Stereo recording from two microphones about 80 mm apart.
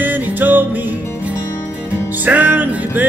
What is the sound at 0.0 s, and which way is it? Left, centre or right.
Music, right.